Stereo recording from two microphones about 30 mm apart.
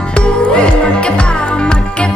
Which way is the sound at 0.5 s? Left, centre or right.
Left.